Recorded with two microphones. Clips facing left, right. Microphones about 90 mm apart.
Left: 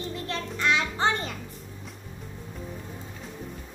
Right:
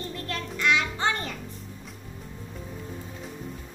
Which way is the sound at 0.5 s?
35° left (ahead or behind).